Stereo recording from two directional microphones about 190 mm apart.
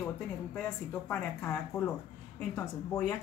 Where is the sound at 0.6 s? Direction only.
5° left (ahead or behind).